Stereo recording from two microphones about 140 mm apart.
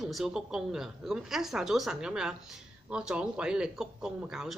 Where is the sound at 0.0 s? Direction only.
5° right (ahead or behind).